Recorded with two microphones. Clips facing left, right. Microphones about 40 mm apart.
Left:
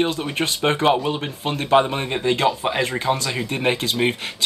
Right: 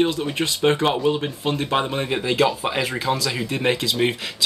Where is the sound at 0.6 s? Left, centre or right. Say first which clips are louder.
Left 1 dB; centre.